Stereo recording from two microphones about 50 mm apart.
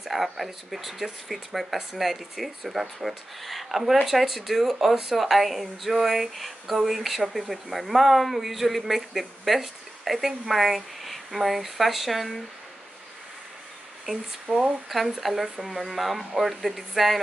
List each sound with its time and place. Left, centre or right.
0.0 s speech: centre
14.5 s speech: centre
14.9 s speech: centre